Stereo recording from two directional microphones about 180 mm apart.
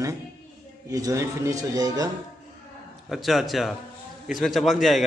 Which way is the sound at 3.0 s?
Centre (ahead or behind).